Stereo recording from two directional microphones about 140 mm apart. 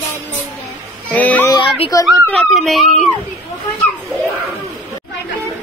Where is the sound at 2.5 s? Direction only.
Centre (ahead or behind).